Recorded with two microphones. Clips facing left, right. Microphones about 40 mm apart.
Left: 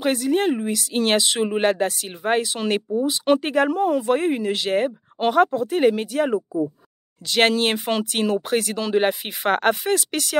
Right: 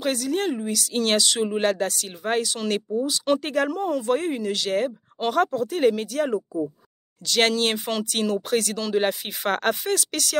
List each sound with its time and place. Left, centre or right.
0.0 s speech: centre